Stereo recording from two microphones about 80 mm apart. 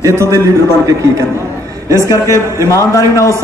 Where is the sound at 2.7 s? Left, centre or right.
Left.